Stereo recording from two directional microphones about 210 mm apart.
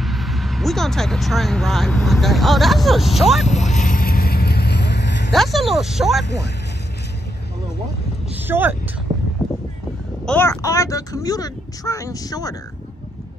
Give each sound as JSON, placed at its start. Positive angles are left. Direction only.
{"t": 0.0, "sound": "speech", "side_deg": 0}
{"t": 3.4, "sound": "vehicle", "side_deg": 35}
{"t": 5.3, "sound": "speech", "side_deg": 0}
{"t": 6.2, "sound": "speech", "side_deg": 55}
{"t": 8.4, "sound": "speech", "side_deg": -10}
{"t": 9.1, "sound": "a sound", "side_deg": -35}
{"t": 10.2, "sound": "speech", "side_deg": 10}